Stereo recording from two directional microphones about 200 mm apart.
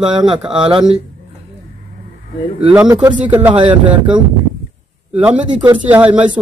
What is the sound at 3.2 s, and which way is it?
Speech, 10° right (ahead or behind).